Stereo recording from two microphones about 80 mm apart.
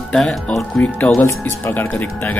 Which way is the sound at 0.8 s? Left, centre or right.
Centre.